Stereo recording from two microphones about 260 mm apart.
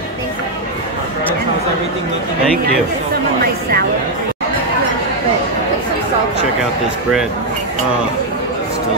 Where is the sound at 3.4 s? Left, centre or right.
Right.